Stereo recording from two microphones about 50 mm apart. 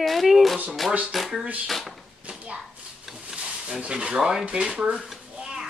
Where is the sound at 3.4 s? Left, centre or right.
Right.